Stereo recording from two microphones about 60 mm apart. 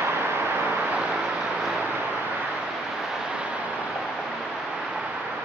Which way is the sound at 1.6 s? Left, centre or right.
Centre.